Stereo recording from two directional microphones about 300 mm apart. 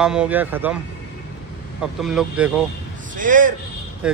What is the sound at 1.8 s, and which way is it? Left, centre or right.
Speech, centre.